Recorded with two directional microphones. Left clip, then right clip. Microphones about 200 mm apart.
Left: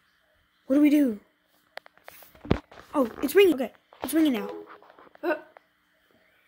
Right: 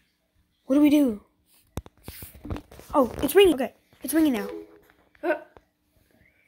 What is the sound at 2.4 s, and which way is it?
Speech, 20° left (ahead or behind).